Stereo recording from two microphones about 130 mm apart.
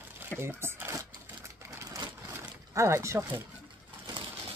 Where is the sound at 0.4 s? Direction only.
20° right (ahead or behind).